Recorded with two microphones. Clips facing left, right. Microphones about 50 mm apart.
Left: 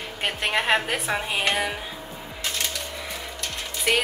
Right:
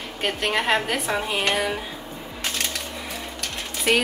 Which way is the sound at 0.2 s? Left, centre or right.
Centre.